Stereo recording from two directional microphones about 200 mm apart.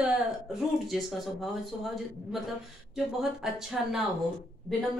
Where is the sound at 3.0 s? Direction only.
Centre (ahead or behind).